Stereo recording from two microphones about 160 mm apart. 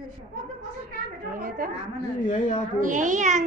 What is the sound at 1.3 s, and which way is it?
Speech, 60° right (ahead or behind).